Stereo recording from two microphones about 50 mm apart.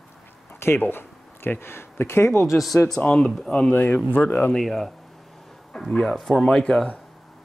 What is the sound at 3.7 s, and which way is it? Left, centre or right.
Speech, left.